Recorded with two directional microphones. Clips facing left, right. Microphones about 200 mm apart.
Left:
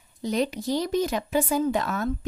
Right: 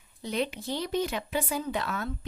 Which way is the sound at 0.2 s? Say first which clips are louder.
Left 5 dB; 40° left (ahead or behind).